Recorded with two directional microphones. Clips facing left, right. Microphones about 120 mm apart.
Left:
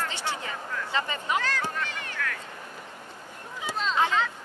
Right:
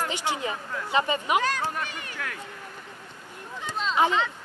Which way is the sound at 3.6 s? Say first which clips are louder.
Even; centre (ahead or behind).